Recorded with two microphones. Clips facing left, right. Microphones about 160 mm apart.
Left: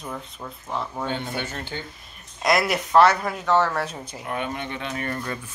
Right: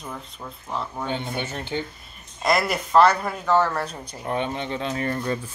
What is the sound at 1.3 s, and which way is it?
Speech, 20° right (ahead or behind).